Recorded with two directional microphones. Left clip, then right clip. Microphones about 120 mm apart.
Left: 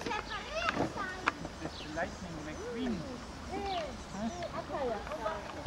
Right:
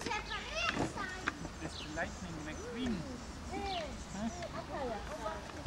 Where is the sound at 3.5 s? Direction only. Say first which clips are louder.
Left 3 dB; 5° right (ahead or behind).